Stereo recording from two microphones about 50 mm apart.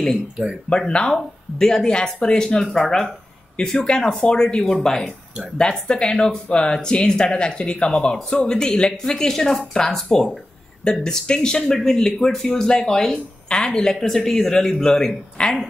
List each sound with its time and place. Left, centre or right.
0.7 s speech: centre